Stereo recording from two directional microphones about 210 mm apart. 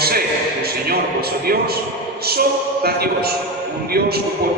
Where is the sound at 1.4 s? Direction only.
50° right (ahead or behind).